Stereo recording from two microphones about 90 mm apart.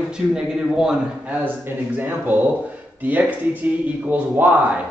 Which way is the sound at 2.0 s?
20° right (ahead or behind).